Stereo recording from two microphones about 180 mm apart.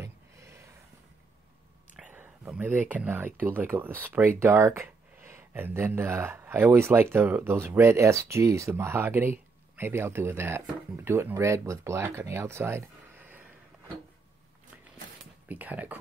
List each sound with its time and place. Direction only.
0.0 s a sound: 15° right (ahead or behind)
2.0 s speech: 10° right (ahead or behind)
15.4 s speech: 10° right (ahead or behind)